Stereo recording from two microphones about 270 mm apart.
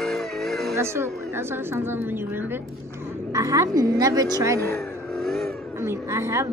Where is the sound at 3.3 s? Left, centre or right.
Centre.